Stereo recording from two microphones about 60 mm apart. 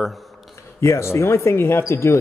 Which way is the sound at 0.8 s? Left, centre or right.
Left.